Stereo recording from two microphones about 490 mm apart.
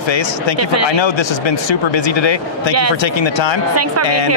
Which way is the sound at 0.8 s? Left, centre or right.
Left.